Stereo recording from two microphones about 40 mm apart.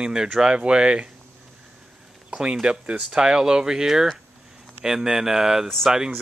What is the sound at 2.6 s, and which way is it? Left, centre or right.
Speech, right.